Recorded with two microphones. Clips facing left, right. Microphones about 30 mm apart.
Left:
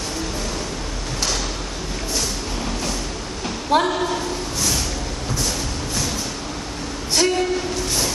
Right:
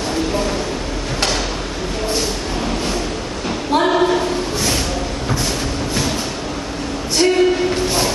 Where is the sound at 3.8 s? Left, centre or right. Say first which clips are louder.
Right 7 dB; right.